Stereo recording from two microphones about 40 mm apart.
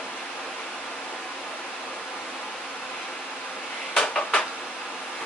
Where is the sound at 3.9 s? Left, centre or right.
Centre.